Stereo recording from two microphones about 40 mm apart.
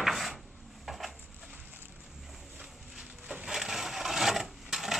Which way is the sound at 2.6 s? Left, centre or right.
Centre.